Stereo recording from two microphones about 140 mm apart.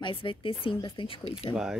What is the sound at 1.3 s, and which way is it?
Speech, 50° left (ahead or behind).